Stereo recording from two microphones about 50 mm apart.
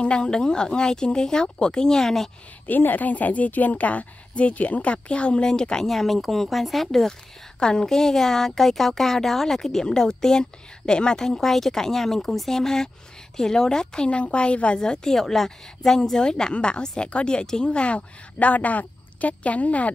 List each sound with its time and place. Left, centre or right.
0.0 s speech: centre
2.6 s a woman's voice: left; by 5.9 s centre
5.9 s a woman's voice: centre; by 19.9 s left